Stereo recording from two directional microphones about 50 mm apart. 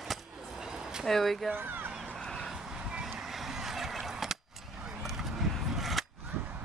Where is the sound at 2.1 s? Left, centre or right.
Centre.